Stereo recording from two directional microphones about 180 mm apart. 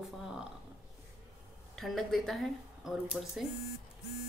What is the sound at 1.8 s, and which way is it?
Speech, centre (ahead or behind).